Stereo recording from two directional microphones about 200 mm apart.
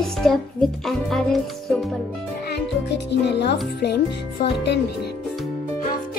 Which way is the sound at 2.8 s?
60° left (ahead or behind).